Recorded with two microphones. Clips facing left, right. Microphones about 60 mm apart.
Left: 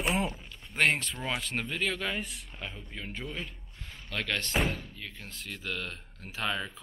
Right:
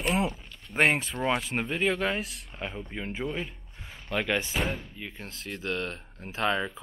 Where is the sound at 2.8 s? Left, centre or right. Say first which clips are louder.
Right 6 dB; right.